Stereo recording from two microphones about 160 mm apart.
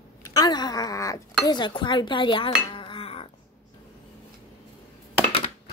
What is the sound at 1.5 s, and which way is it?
Dishes, 30° left (ahead or behind).